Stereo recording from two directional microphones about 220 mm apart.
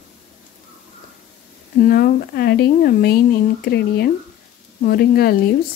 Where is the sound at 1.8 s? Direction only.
45° left (ahead or behind).